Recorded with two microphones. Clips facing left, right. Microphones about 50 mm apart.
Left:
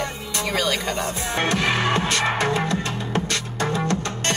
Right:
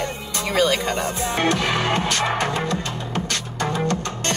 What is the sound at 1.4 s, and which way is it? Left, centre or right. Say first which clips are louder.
Speech: even; left.